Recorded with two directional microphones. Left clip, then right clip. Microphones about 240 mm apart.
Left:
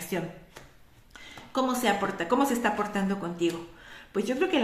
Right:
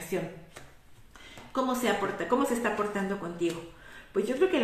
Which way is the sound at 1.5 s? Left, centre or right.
Left.